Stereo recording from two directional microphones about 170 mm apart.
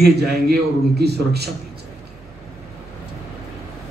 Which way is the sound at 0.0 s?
70° right (ahead or behind).